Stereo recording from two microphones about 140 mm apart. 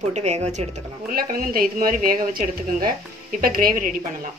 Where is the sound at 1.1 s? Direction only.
90° right.